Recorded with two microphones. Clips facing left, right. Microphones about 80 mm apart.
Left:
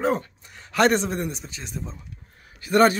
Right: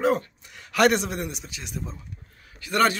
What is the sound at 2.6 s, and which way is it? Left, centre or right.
Speech, left.